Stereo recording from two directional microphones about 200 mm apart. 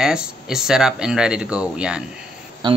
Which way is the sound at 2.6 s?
20° right (ahead or behind).